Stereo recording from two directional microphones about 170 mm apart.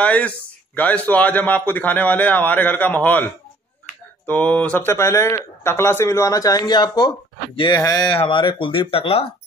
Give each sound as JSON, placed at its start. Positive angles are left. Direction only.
{"t": 0.0, "sound": "speech", "side_deg": 10}
{"t": 4.3, "sound": "speech", "side_deg": 10}